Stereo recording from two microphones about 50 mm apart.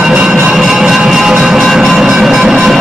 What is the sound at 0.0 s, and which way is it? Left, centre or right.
Music, centre.